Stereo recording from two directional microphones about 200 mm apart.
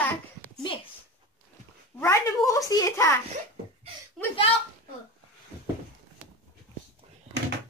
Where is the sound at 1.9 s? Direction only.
15° left (ahead or behind).